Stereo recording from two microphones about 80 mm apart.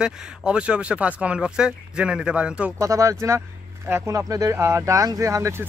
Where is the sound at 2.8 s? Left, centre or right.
Right.